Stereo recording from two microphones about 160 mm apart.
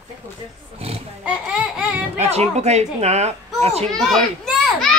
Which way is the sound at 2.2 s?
40° right (ahead or behind).